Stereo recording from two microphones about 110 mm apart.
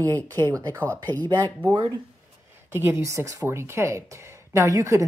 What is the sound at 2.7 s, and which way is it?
A woman's voice, 20° right (ahead or behind).